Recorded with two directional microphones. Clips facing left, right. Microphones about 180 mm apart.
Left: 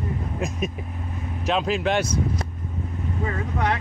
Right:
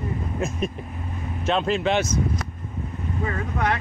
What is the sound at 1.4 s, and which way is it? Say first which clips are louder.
Speech: right 1 dB; 5° left (ahead or behind).